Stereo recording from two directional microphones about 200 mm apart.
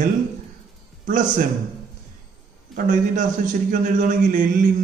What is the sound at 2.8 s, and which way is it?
Speech, 40° right (ahead or behind).